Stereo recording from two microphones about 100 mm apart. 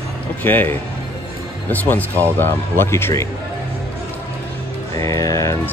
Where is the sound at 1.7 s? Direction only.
15° left (ahead or behind).